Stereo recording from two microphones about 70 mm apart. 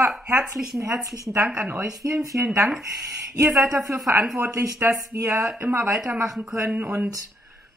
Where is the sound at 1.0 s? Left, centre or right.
Right.